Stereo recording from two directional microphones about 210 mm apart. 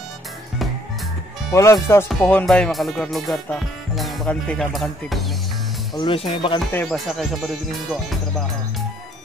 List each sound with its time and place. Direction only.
1.5 s speech: 15° left (ahead or behind)
2.0 s music: 5° left (ahead or behind)
5.9 s speech: 25° left (ahead or behind)
6.7 s music: 5° left (ahead or behind)